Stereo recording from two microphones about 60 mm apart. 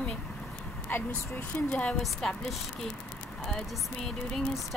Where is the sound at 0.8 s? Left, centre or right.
Left.